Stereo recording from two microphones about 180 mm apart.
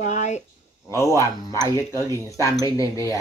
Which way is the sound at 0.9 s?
15° left (ahead or behind).